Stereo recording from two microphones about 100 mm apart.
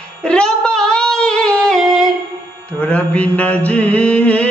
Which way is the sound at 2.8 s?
10° left (ahead or behind).